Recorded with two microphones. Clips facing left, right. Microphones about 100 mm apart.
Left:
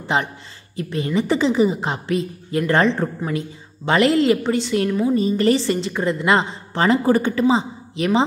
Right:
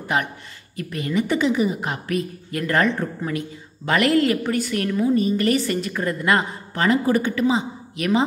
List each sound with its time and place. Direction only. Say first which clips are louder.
0.0 s a woman's voice: left 2 dB; 25° left (ahead or behind)